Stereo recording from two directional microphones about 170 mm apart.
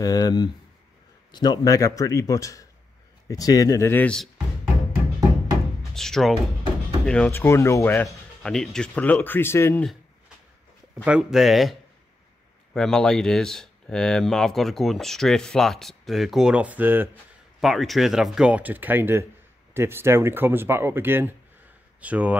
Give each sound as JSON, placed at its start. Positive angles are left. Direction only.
{"t": 0.0, "sound": "a man's voice", "side_deg": 25}
{"t": 5.9, "sound": "speech", "side_deg": 0}
{"t": 8.1, "sound": "speech", "side_deg": 5}
{"t": 11.1, "sound": "speech", "side_deg": -5}
{"t": 12.7, "sound": "speech", "side_deg": 5}
{"t": 17.6, "sound": "speech", "side_deg": 0}